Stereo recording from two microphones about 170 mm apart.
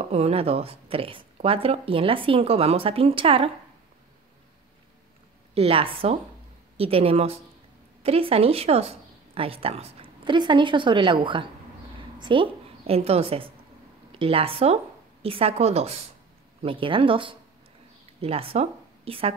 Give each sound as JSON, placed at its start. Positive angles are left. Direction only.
{"t": 0.0, "sound": "speech", "side_deg": -35}
{"t": 5.5, "sound": "a woman's voice", "side_deg": -35}